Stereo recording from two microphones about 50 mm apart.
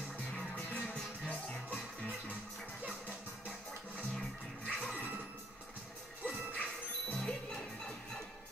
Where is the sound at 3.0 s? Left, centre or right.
Left.